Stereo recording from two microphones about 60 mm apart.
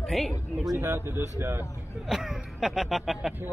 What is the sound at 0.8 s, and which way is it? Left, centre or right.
Speech, right.